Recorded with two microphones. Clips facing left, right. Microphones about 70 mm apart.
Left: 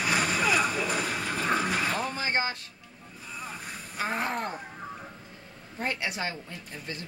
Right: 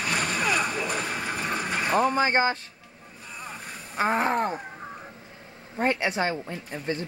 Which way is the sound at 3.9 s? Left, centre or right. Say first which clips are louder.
Right 7 dB; right.